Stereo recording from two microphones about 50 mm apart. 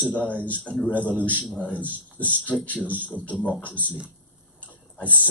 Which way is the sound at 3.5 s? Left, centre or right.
Left.